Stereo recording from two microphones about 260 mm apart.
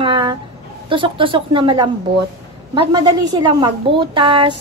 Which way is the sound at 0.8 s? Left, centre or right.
Centre.